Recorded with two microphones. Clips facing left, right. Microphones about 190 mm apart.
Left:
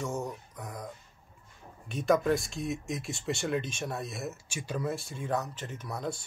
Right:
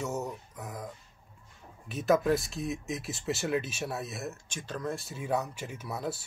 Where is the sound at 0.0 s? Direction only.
5° right (ahead or behind).